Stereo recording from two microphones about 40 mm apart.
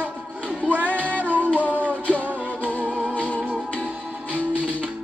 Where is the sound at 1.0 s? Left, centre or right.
Left.